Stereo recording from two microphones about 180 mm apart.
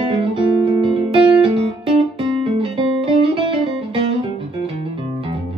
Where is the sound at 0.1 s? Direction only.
30° right (ahead or behind).